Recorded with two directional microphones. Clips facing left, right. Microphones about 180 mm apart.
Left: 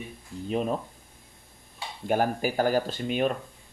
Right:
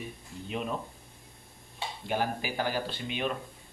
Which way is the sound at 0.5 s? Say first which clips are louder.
Left 7 dB; 40° left (ahead or behind).